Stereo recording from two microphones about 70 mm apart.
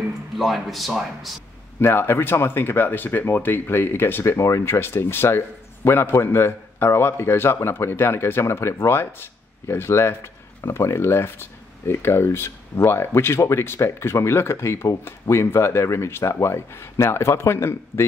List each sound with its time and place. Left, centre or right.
0.4 s a man's voice: centre
1.8 s speech: left
4.2 s speech: left